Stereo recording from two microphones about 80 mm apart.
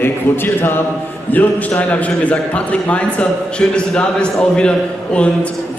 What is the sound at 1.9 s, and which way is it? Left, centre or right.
A man's voice, centre.